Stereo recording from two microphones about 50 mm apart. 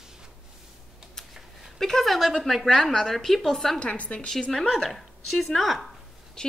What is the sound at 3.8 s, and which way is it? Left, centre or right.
Speech, left.